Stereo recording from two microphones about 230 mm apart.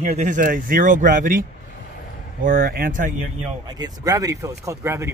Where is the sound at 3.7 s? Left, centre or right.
Centre.